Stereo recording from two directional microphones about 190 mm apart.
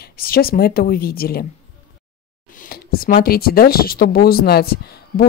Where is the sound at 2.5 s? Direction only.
50° left (ahead or behind).